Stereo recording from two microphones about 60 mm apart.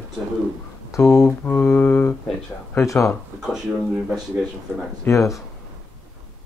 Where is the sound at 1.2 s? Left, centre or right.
Left.